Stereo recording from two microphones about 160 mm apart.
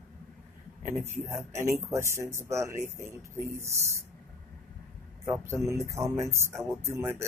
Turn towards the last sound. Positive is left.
turn(degrees=-15)  # may be behind; listen again after turning